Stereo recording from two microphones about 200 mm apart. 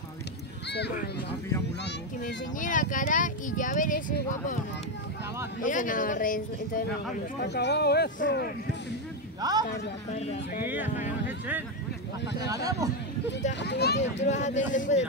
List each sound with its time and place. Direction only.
0.7 s speech: 55° left (ahead or behind)
2.6 s speech: 40° left (ahead or behind)
5.6 s speech: 40° left (ahead or behind)
7.3 s speech: 55° left (ahead or behind)
9.4 s a man's voice: 20° right (ahead or behind)
10.1 s speech: 30° left (ahead or behind)
10.6 s speech: 10° right (ahead or behind)
13.5 s speech: 60° left (ahead or behind)
14.3 s speech: 35° left (ahead or behind)